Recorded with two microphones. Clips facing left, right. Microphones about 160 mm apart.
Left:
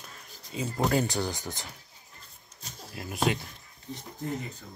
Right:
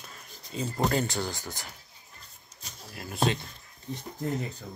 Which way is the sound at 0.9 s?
15° left (ahead or behind).